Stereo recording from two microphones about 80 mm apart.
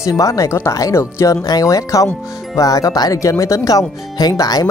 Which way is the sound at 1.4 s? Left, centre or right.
Left.